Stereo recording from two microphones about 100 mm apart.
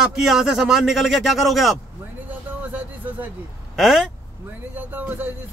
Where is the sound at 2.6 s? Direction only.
15° right (ahead or behind).